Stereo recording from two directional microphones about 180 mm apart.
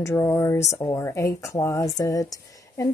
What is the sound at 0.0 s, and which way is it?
Speech, 15° left (ahead or behind).